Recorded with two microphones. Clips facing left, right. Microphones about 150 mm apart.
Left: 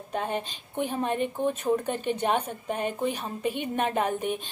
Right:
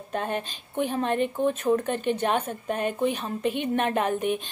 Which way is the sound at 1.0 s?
65° right (ahead or behind).